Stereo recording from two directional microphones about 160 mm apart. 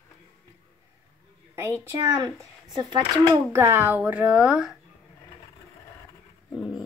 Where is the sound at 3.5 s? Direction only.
15° right (ahead or behind).